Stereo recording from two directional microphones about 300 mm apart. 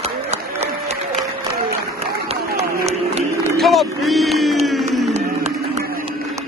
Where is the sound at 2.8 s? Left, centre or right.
Right.